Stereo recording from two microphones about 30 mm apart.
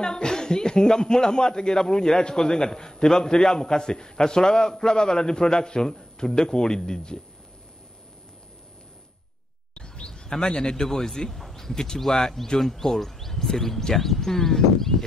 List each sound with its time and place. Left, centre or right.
0.0 s speech: left
9.8 s bird: left
10.9 s speech: centre
11.5 s speech: centre